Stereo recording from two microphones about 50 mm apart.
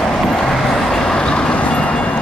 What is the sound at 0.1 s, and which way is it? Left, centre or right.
Vehicle, centre.